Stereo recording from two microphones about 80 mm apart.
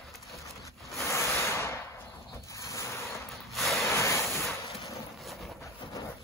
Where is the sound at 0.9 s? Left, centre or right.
Left.